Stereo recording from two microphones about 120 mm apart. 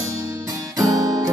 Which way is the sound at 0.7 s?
30° right (ahead or behind).